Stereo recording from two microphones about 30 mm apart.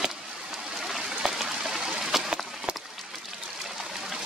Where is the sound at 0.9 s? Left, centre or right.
Centre.